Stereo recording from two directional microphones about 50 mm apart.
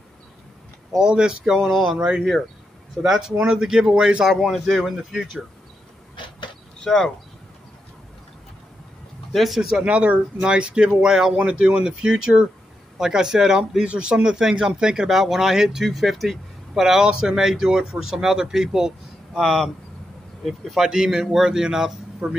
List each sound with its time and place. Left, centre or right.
0.9 s speech: centre
2.0 s speech: right
3.0 s speech: centre
4.2 s speech: centre
6.8 s speech: centre
9.3 s speech: centre
9.8 s speech: right; by 19.4 s centre
19.4 s speech: centre
20.7 s speech: centre